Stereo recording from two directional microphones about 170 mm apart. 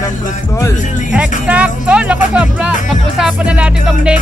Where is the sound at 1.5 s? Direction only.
10° right (ahead or behind).